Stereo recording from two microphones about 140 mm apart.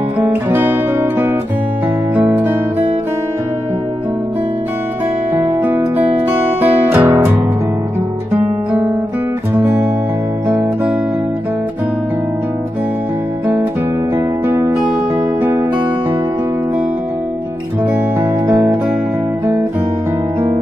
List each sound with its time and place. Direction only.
0.2 s guitar: 15° right (ahead or behind)
2.1 s music: 15° right (ahead or behind)
5.6 s music: 10° right (ahead or behind)
6.6 s guitar: 15° right (ahead or behind)
9.6 s music: 15° right (ahead or behind)
14.1 s music: 15° right (ahead or behind)
18.5 s music: 20° right (ahead or behind)